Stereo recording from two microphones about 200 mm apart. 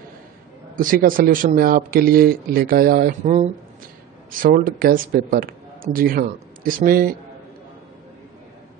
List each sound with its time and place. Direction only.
0.7 s speech: 45° right (ahead or behind)